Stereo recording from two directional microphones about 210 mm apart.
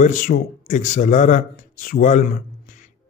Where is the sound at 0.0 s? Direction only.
40° left (ahead or behind).